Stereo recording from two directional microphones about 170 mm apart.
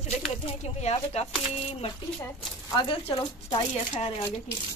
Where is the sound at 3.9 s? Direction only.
35° left (ahead or behind).